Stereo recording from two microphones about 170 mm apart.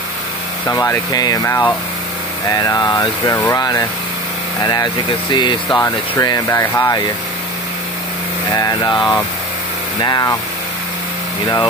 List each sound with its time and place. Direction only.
0.7 s speech: 20° left (ahead or behind)
8.5 s speech: 25° left (ahead or behind)